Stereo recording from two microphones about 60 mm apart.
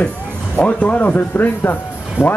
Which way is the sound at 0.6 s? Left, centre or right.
Left.